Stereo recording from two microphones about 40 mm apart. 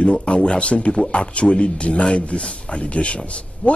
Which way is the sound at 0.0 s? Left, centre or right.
Left.